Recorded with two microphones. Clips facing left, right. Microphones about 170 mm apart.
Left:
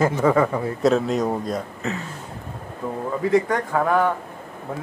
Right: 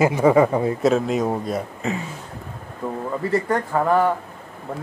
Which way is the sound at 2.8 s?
5° right (ahead or behind).